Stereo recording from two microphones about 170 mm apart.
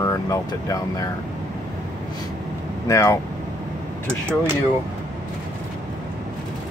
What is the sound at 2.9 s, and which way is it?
Speech, 20° left (ahead or behind).